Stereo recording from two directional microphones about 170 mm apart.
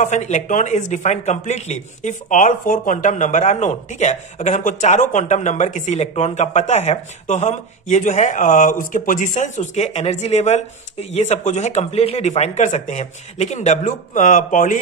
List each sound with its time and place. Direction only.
0.0 s speech: 45° left (ahead or behind)